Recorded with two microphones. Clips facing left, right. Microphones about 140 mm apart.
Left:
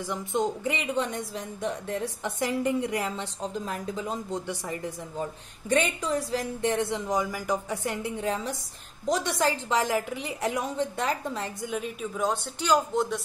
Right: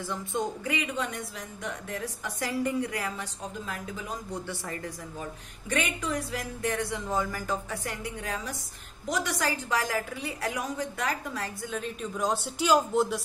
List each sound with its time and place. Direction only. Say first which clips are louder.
0.0 s a woman's voice: left 3 dB; 15° left (ahead or behind)
3.6 s a woman's voice: left 5 dB; 35° left (ahead or behind); by 5.3 s 20° left (ahead or behind)
5.7 s a woman's voice: left 5 dB; 30° left (ahead or behind); by 12.1 s 10° left (ahead or behind)
12.2 s a man's voice: even; 5° right (ahead or behind)